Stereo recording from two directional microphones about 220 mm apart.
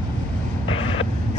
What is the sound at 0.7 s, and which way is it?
Vehicle, 25° left (ahead or behind).